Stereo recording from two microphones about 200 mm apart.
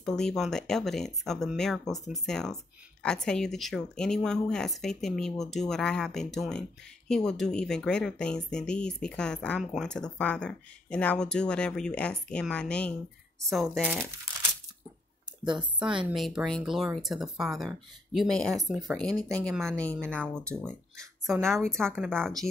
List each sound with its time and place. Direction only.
0.0 s speech: 5° left (ahead or behind)
15.4 s speech: 25° right (ahead or behind)
16.1 s speech: centre (ahead or behind)
21.9 s speech: 10° right (ahead or behind)